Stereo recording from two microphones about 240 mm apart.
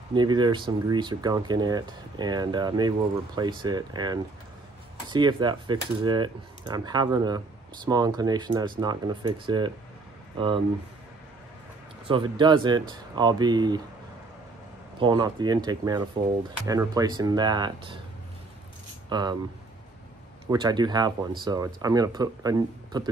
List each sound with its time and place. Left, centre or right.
0.1 s speech: centre
12.1 s speech: centre
15.0 s speech: centre
19.0 s speech: centre
20.4 s speech: centre